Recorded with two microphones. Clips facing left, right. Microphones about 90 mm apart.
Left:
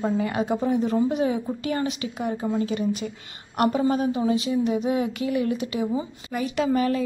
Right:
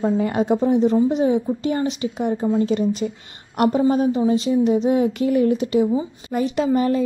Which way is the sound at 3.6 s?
30° right (ahead or behind).